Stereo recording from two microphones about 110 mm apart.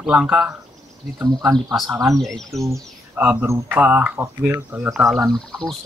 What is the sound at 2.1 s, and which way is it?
Speech, centre (ahead or behind).